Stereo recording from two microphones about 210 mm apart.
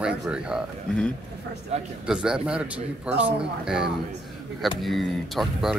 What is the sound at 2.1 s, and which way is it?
Speech, 5° right (ahead or behind).